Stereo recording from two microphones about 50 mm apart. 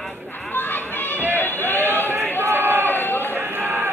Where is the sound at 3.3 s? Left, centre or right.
Right.